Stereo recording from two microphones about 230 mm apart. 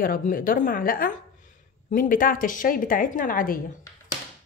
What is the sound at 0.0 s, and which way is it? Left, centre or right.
Speech, left.